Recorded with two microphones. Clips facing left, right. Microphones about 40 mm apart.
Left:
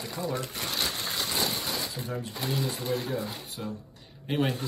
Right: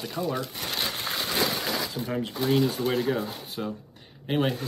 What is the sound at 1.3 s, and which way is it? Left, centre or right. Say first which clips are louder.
Speech: right 6 dB; right.